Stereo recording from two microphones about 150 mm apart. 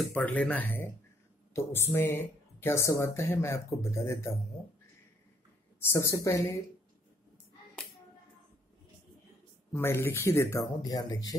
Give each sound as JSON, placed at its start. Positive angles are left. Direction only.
{"t": 0.1, "sound": "speech", "side_deg": 10}
{"t": 5.9, "sound": "a woman's voice", "side_deg": 20}
{"t": 9.7, "sound": "speech", "side_deg": 15}